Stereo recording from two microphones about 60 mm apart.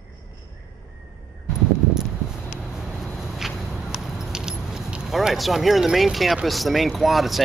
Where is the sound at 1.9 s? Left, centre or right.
Centre.